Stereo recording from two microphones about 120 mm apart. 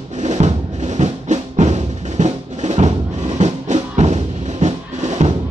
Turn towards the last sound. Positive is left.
turn(degrees=-70)  # may be behind; listen again after turning